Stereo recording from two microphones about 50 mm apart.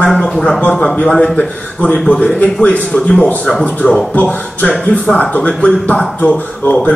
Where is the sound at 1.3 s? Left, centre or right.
Left.